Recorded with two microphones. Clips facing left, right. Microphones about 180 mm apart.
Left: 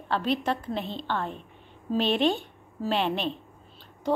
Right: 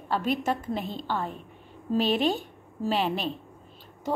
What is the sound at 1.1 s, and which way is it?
A woman's voice, 5° right (ahead or behind).